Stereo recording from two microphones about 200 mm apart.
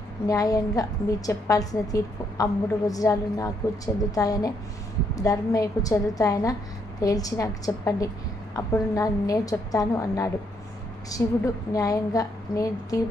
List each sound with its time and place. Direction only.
0.3 s a woman's voice: 15° left (ahead or behind)